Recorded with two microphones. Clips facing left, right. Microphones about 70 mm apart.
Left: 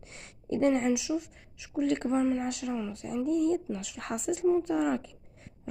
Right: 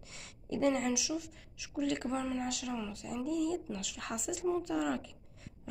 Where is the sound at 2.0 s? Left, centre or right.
Left.